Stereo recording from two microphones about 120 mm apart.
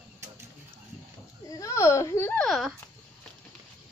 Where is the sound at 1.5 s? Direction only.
25° left (ahead or behind).